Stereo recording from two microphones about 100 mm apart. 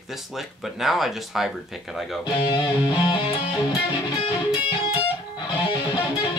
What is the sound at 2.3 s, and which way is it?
Music, 50° left (ahead or behind).